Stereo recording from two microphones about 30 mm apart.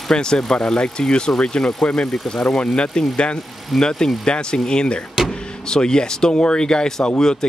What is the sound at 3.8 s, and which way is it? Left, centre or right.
Speech, left.